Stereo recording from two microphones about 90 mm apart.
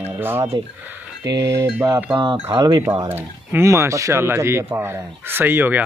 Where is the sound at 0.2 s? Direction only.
25° right (ahead or behind).